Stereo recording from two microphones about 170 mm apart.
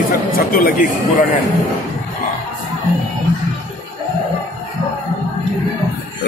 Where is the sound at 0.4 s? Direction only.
60° left (ahead or behind).